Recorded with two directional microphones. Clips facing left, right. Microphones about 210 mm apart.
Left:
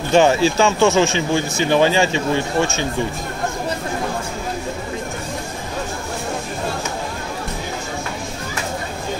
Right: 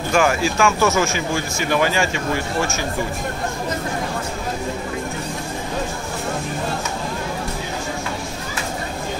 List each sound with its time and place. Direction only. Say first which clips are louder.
0.1 s speech: left 5 dB; 25° left (ahead or behind)